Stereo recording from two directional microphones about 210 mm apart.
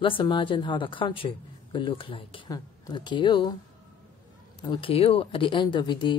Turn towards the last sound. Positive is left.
turn(degrees=20)  # may be behind; listen again after turning